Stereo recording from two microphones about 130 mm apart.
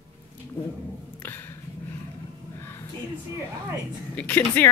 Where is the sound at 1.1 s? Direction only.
15° left (ahead or behind).